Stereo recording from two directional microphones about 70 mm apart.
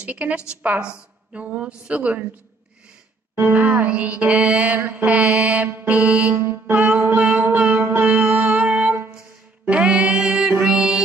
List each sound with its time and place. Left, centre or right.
0.0 s music: right
0.5 s a woman's voice: centre
3.5 s music: right
7.2 s a woman's voice: centre
7.4 s music: right; by 11.1 s centre